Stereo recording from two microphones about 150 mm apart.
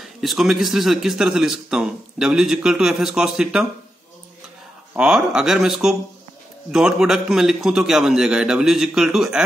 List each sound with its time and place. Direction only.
0.0 s speech: centre (ahead or behind)
4.9 s speech: 5° right (ahead or behind)